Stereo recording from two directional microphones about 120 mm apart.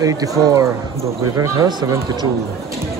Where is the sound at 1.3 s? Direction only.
30° right (ahead or behind).